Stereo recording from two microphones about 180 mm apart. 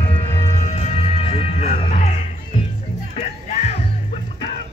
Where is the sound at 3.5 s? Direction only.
40° left (ahead or behind).